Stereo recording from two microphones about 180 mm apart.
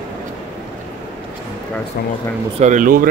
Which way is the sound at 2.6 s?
45° right (ahead or behind).